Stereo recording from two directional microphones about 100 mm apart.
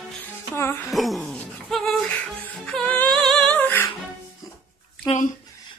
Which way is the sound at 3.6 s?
20° left (ahead or behind).